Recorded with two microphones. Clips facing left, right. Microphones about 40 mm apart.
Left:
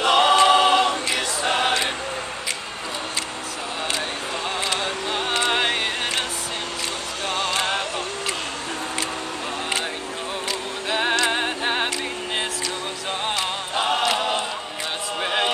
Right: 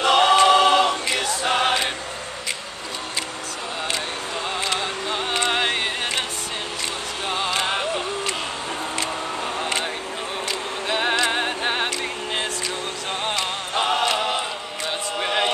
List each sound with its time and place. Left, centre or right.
0.0 s choir: centre
4.6 s a sound: centre
7.2 s music: centre
10.9 s music: centre
13.2 s music: centre
15.1 s a sound: centre